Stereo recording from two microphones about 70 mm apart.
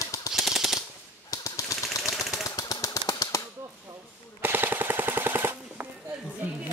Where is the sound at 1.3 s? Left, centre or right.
Left.